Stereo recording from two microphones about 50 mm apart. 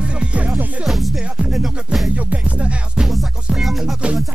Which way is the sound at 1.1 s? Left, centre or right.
Centre.